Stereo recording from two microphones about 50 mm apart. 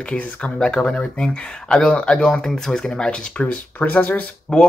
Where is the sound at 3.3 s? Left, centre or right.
Left.